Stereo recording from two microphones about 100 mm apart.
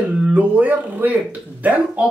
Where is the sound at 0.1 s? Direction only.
15° right (ahead or behind).